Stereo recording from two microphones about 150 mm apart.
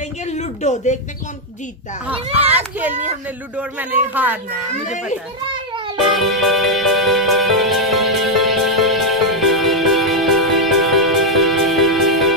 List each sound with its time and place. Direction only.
0.3 s a sound: 50° left (ahead or behind)
2.3 s speech: 10° right (ahead or behind)
5.9 s music: centre (ahead or behind)